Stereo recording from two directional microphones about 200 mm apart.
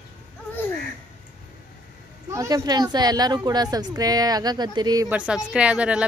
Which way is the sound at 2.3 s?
15° right (ahead or behind).